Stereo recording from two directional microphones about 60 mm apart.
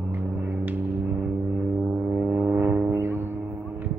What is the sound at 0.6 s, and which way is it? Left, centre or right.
Music, right.